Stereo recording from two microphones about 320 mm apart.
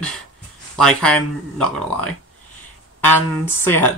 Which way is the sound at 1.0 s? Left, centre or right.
Centre.